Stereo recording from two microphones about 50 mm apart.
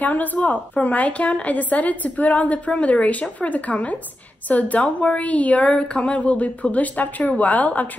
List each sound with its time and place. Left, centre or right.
0.0 s a woman's voice: left